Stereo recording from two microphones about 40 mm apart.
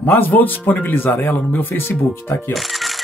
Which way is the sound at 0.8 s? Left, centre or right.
Left.